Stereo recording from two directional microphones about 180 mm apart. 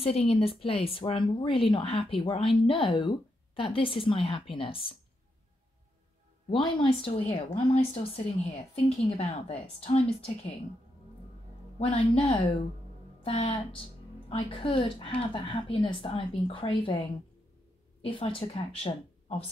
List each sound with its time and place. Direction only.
0.0 s speech: 35° left (ahead or behind)
7.1 s speech: 35° left (ahead or behind)
11.8 s a woman's voice: 35° left (ahead or behind)
18.0 s speech: 30° left (ahead or behind)